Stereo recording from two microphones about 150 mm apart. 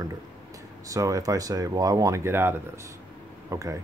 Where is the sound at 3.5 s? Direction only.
20° right (ahead or behind).